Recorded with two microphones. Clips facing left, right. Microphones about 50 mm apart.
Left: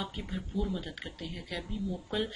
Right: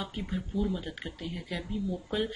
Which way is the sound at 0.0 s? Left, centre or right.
Centre.